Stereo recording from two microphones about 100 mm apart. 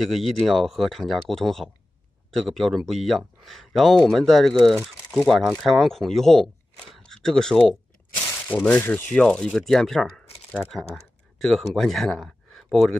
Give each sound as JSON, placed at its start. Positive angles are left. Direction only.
{"t": 0.0, "sound": "speech", "side_deg": 0}
{"t": 8.5, "sound": "speech", "side_deg": 15}
{"t": 9.1, "sound": "speech", "side_deg": 10}